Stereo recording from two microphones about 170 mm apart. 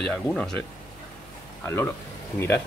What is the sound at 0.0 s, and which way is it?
Speech, 5° left (ahead or behind).